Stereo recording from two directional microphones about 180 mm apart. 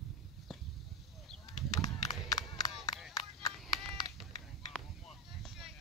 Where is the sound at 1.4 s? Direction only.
20° left (ahead or behind).